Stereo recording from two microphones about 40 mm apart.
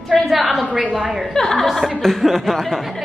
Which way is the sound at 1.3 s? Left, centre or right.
Centre.